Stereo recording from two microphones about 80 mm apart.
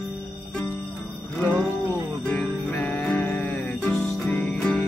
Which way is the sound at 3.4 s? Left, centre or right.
Left.